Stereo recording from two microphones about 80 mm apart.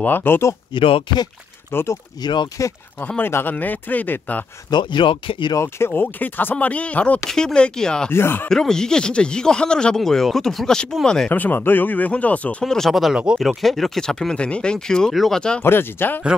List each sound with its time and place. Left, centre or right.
0.0 s speech: left
0.7 s speech: left
1.7 s speech: left
2.6 s speech: left
3.2 s speech: left
4.6 s speech: left
5.9 s speech: left
8.1 s speech: left
8.5 s speech: centre
11.2 s speech: left
12.6 s speech: centre
15.6 s speech: left